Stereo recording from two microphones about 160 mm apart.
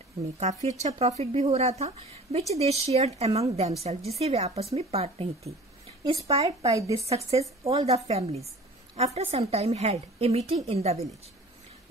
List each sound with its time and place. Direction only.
0.4 s speech: 45° right (ahead or behind)